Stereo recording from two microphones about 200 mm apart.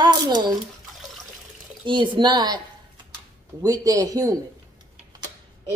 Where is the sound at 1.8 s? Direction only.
25° right (ahead or behind).